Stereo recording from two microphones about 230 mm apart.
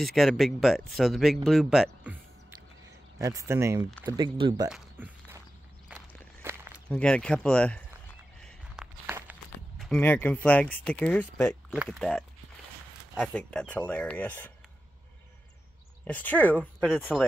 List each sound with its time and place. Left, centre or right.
0.0 s speech: centre
3.2 s speech: centre
4.6 s a sound: centre
5.9 s walk: centre
6.4 s a sound: centre
6.9 s speech: centre
8.4 s walk: centre
9.8 s speech: centre
16.1 s speech: centre